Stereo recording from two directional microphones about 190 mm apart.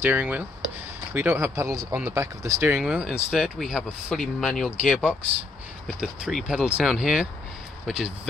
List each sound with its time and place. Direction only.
0.0 s speech: 10° right (ahead or behind)